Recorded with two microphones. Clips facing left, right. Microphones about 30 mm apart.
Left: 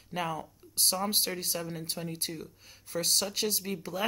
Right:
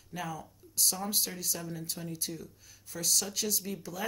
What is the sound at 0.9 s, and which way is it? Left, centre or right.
Speech, left.